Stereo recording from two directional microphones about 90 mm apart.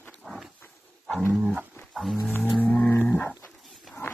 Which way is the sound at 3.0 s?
15° left (ahead or behind).